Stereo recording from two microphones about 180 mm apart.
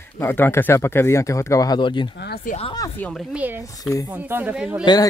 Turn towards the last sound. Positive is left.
turn(degrees=25)  # may be behind; listen again after turning